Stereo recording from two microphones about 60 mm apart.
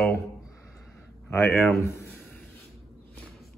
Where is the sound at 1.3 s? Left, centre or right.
Left.